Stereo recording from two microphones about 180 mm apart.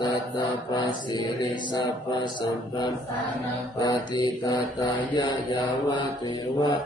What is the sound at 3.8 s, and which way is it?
Mantra, 20° left (ahead or behind).